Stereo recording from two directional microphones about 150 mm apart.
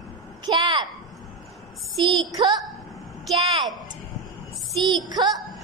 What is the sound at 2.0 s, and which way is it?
Speech, 30° right (ahead or behind).